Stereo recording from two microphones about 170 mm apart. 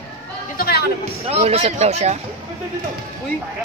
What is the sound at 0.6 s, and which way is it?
Music, 65° left (ahead or behind).